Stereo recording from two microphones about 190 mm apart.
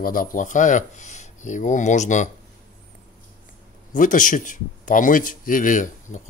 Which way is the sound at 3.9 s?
45° left (ahead or behind).